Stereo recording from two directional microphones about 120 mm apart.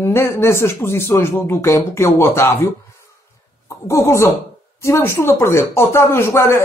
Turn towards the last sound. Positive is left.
turn(degrees=20)  # may be behind; listen again after turning